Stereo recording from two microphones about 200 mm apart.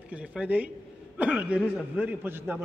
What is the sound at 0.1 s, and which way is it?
A man's voice, 5° right (ahead or behind).